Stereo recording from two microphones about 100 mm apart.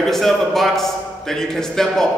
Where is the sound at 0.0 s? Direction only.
5° left (ahead or behind).